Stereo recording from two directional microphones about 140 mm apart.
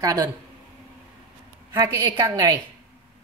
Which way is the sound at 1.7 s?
25° right (ahead or behind).